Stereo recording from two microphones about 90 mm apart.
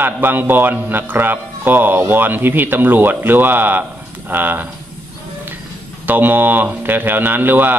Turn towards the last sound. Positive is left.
turn(degrees=-20)  # may be behind; listen again after turning